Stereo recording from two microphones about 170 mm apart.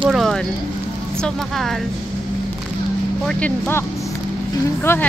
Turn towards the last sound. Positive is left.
turn(degrees=15)  # may be behind; listen again after turning